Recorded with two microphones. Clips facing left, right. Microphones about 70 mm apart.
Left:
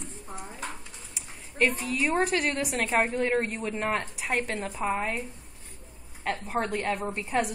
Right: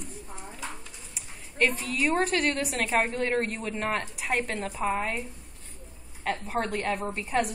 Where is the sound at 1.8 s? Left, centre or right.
Centre.